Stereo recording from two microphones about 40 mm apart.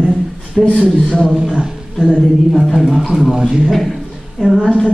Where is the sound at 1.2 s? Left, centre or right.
Centre.